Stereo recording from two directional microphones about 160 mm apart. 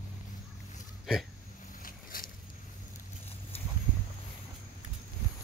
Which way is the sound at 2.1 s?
60° left (ahead or behind).